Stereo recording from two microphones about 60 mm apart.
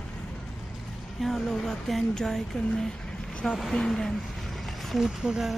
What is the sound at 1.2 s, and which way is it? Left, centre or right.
Speech, centre.